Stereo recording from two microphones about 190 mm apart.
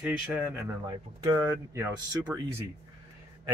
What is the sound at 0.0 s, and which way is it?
Speech, 5° right (ahead or behind).